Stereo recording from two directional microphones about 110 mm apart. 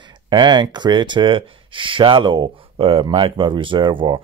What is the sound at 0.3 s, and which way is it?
Speech, 40° right (ahead or behind).